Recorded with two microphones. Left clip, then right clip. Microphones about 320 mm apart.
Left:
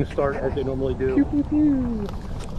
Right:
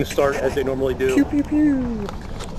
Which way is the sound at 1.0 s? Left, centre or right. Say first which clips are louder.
Right 2 dB; right.